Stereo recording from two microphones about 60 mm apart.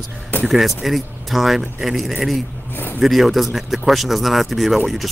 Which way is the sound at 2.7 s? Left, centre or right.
Left.